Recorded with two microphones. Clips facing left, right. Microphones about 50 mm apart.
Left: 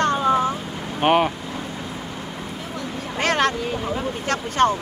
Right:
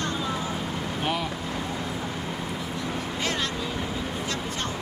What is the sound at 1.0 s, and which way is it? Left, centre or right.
Speech, left.